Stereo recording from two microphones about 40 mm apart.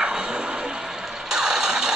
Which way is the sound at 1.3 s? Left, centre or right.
Centre.